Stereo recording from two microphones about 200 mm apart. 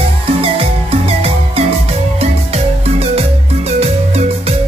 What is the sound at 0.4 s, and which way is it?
Music, 30° right (ahead or behind).